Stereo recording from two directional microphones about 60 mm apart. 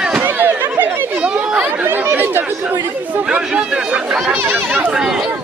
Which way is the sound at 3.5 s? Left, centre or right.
Centre.